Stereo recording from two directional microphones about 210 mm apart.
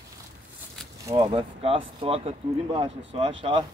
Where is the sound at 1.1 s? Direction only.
25° right (ahead or behind).